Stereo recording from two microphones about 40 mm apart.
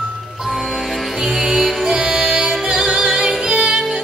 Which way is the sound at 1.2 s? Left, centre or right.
Centre.